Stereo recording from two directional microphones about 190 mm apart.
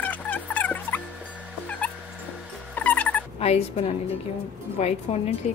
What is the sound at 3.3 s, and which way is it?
Speech, 35° left (ahead or behind).